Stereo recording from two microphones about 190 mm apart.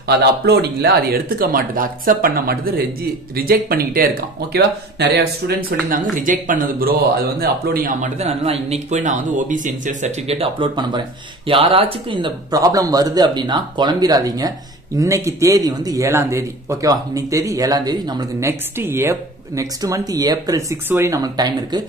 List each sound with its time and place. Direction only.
0.0 s speech: 60° right (ahead or behind); by 21.8 s 20° right (ahead or behind)